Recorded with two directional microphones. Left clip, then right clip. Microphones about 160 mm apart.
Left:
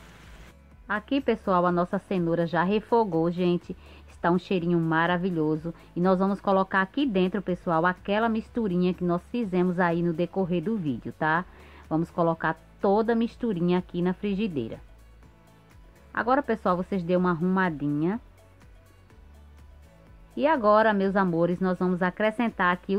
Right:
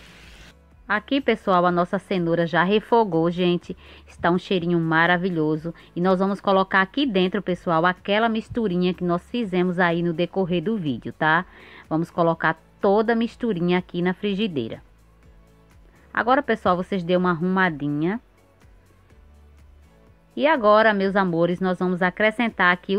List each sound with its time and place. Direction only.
0.8 s a woman's voice: 15° right (ahead or behind)
16.1 s a woman's voice: 10° right (ahead or behind)
20.3 s a woman's voice: 10° right (ahead or behind)